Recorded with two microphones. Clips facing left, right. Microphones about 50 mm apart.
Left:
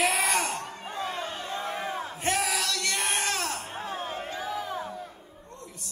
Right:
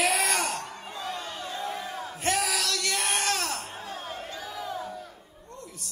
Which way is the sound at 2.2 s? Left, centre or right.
Centre.